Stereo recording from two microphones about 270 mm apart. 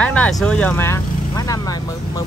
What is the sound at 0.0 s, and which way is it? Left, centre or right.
Speech, centre.